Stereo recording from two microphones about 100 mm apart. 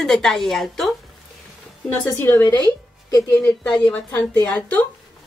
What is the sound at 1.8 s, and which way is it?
A woman's voice, 20° left (ahead or behind).